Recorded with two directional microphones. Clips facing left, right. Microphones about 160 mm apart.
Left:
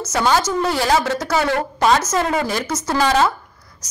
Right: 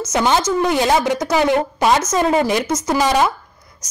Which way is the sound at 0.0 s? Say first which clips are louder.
Right 1 dB; 20° right (ahead or behind).